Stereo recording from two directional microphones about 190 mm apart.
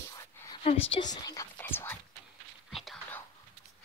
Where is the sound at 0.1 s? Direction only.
20° left (ahead or behind).